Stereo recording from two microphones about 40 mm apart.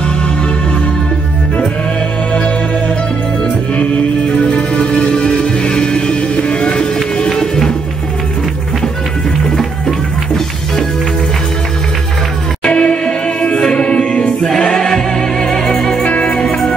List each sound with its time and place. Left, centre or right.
4.5 s music: left
7.2 s music: centre
9.6 s music: centre
12.6 s music: left
14.6 s choir: centre
15.4 s music: centre
16.0 s music: left